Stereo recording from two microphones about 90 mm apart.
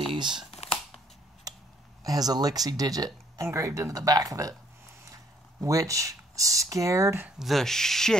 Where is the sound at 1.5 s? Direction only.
40° right (ahead or behind).